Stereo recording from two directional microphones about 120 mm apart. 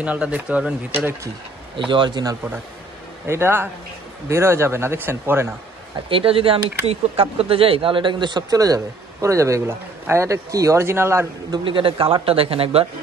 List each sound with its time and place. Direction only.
0.0 s speech: 10° right (ahead or behind)
1.8 s speech: 45° right (ahead or behind)
3.3 s speech: 20° right (ahead or behind)
6.0 s speech: 50° right (ahead or behind); by 11.2 s 20° right (ahead or behind)
11.5 s speech: 45° right (ahead or behind)